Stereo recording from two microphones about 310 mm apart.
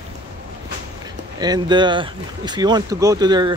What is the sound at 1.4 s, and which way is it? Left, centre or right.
Speech, centre.